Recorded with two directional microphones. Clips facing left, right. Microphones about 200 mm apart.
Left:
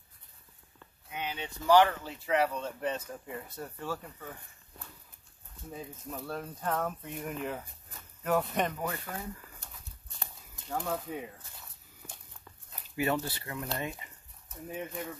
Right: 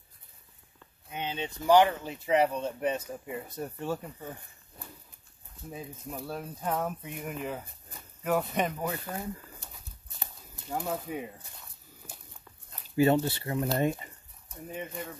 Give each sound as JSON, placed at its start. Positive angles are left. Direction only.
{"t": 1.1, "sound": "speech", "side_deg": -25}
{"t": 5.7, "sound": "speech", "side_deg": -10}
{"t": 10.7, "sound": "speech", "side_deg": -5}
{"t": 12.9, "sound": "speech", "side_deg": -30}
{"t": 13.7, "sound": "speech", "side_deg": -40}
{"t": 14.5, "sound": "speech", "side_deg": 0}